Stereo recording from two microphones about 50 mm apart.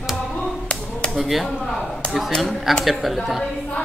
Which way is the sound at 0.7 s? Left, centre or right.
Left.